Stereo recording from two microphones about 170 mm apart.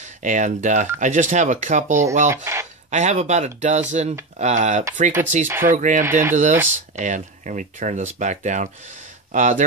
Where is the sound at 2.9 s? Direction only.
45° right (ahead or behind).